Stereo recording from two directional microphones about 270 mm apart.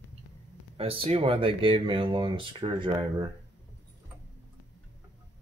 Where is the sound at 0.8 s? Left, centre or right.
Right.